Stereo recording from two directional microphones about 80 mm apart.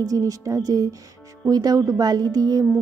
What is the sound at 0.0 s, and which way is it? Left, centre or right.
Speech, right.